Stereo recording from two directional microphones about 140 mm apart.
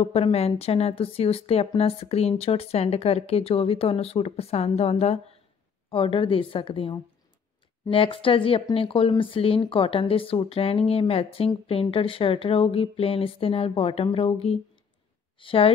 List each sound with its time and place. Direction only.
0.0 s a woman's voice: 45° left (ahead or behind)